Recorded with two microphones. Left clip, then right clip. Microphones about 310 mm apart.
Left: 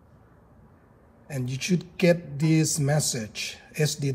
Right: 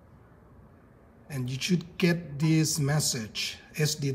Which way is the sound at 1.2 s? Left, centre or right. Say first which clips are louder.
Left 2 dB; centre.